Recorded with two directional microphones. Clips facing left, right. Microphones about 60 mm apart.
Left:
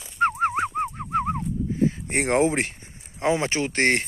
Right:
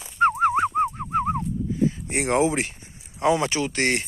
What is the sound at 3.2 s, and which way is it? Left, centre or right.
Speech, left.